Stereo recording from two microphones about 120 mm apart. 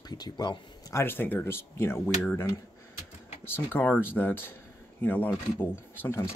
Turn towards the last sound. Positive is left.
turn(degrees=20)  # may be behind; listen again after turning